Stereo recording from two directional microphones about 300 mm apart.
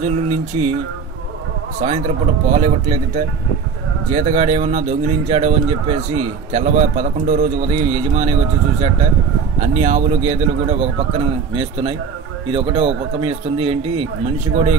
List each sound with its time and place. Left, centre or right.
0.3 s music: right
1.8 s a man's voice: right